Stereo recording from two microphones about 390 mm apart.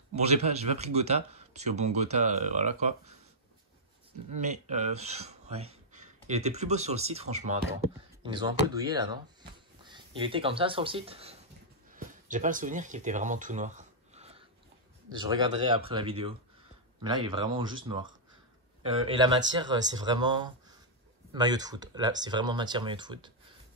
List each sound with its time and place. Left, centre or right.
0.1 s speech: centre
4.4 s speech: centre
11.9 s a sound: centre
15.1 s speech: centre